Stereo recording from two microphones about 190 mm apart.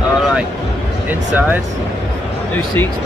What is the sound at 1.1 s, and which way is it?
Speech, 10° right (ahead or behind).